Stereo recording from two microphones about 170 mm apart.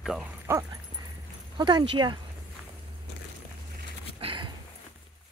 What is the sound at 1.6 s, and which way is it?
Speech, 25° right (ahead or behind).